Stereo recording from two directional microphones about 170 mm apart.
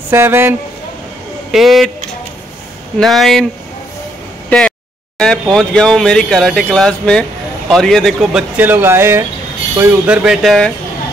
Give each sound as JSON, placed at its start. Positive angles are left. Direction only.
{"t": 0.1, "sound": "speech", "side_deg": -15}
{"t": 1.5, "sound": "speech", "side_deg": 0}
{"t": 3.0, "sound": "speech", "side_deg": 0}
{"t": 4.5, "sound": "a sound", "side_deg": 5}
{"t": 5.2, "sound": "speech", "side_deg": 5}